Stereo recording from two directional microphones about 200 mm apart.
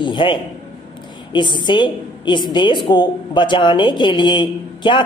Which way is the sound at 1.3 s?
20° left (ahead or behind).